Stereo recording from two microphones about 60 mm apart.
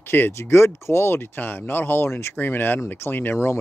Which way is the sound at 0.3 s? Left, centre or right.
Left.